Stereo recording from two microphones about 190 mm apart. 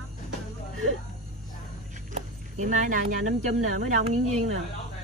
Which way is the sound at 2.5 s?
40° right (ahead or behind).